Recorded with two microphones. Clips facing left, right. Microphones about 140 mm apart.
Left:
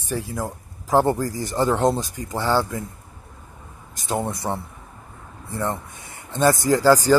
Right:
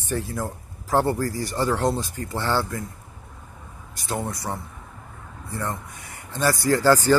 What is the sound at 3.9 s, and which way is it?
Speech, 20° left (ahead or behind).